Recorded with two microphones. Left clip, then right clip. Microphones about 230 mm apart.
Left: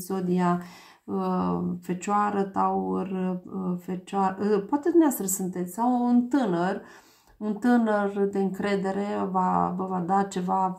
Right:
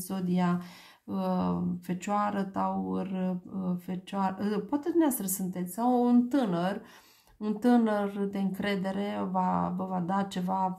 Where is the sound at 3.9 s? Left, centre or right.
Right.